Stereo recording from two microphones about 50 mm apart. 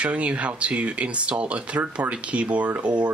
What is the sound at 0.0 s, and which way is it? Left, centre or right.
Speech, right.